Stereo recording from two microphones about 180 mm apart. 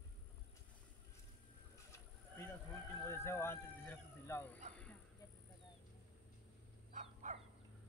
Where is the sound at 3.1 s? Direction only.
15° left (ahead or behind).